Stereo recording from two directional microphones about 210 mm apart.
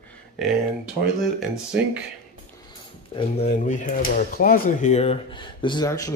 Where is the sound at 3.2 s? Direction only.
30° left (ahead or behind).